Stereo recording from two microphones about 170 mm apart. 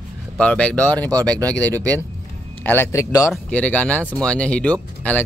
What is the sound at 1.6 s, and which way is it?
Speech, 20° right (ahead or behind).